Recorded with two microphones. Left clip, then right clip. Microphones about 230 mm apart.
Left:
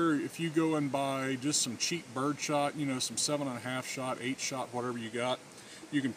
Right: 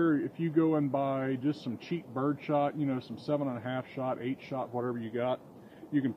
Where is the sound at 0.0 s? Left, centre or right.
Left.